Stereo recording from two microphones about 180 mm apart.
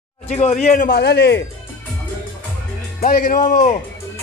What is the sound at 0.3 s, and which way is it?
A man's voice, 40° left (ahead or behind).